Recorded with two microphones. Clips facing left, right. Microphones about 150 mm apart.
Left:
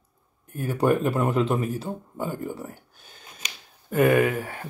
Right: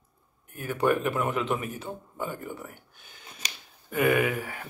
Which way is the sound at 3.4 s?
35° right (ahead or behind).